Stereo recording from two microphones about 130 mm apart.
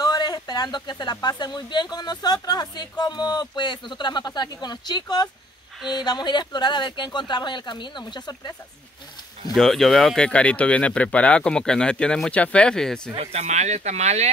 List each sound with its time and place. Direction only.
0.0 s a sound: 30° left (ahead or behind)
1.2 s speech: 35° left (ahead or behind)
9.5 s speech: centre (ahead or behind)
13.1 s speech: 50° right (ahead or behind)